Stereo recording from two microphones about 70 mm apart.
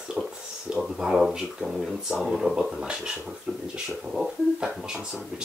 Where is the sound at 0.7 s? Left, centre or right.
Centre.